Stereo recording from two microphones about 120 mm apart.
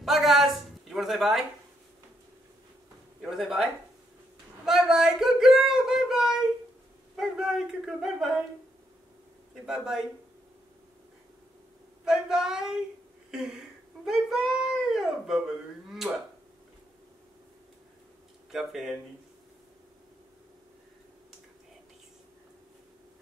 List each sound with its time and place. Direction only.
0.0 s a sound: centre (ahead or behind)
3.2 s speech: 5° right (ahead or behind)
4.6 s a sound: 5° right (ahead or behind)
7.2 s speech: 5° right (ahead or behind)
9.7 s speech: 5° right (ahead or behind)
12.0 s speech: 5° right (ahead or behind)
14.0 s speech: 5° right (ahead or behind)
18.5 s speech: 5° right (ahead or behind)